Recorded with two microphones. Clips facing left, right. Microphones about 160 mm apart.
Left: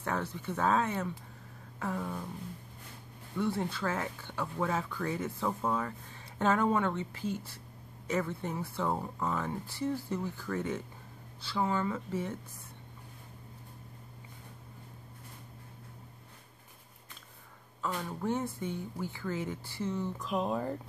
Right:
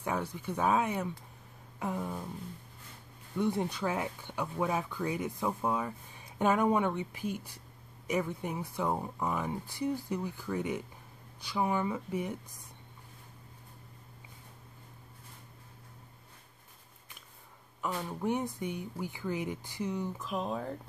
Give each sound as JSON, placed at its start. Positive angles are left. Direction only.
{"t": 0.0, "sound": "speech", "side_deg": -15}
{"t": 3.3, "sound": "speech", "side_deg": -15}
{"t": 17.8, "sound": "speech", "side_deg": -15}
{"t": 20.2, "sound": "speech", "side_deg": 0}